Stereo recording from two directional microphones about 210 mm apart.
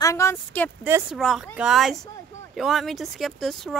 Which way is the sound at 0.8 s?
10° right (ahead or behind).